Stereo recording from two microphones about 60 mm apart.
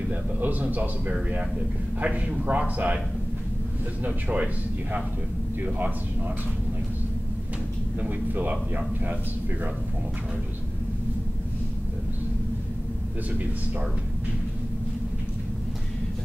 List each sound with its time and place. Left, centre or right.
0.1 s a man's voice: right
4.0 s a man's voice: right
5.6 s a man's voice: right
8.0 s a man's voice: right